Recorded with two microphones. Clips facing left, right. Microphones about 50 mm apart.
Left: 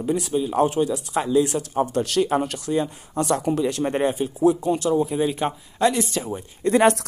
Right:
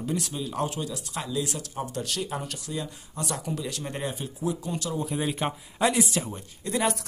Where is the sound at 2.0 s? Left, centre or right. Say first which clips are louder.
Left 11 dB; left.